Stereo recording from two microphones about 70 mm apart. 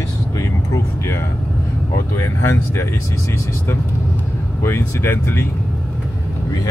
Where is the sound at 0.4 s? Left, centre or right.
Left.